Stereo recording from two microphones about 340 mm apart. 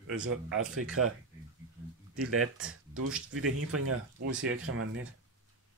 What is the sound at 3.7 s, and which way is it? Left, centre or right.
Speech, right.